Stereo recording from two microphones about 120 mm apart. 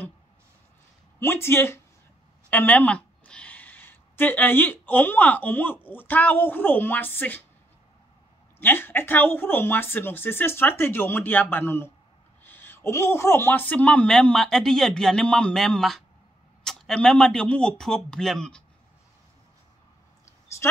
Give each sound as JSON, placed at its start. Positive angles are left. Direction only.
{"t": 1.2, "sound": "a woman's voice", "side_deg": 20}
{"t": 8.5, "sound": "a man's voice", "side_deg": 20}